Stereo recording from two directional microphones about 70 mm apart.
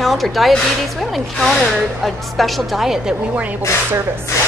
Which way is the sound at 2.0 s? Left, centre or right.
Centre.